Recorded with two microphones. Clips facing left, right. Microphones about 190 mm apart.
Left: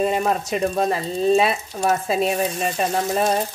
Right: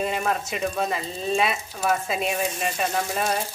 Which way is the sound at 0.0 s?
40° left (ahead or behind).